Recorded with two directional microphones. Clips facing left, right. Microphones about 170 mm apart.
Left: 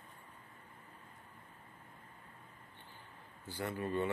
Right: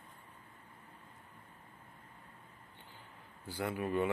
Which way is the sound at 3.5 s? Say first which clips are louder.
Right 2 dB; 10° right (ahead or behind).